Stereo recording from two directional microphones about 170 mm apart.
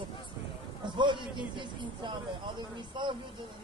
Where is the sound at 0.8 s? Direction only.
30° right (ahead or behind).